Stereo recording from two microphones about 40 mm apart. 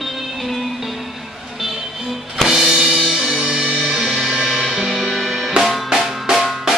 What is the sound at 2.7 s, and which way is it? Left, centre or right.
Music, right.